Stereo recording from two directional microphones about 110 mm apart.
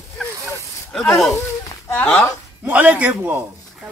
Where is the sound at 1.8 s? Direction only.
15° left (ahead or behind).